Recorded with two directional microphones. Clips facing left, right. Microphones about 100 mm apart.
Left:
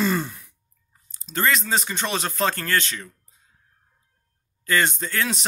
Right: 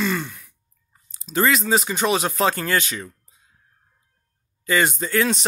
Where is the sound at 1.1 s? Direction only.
5° right (ahead or behind).